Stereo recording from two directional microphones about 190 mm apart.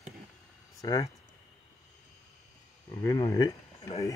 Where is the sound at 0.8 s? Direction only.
20° left (ahead or behind).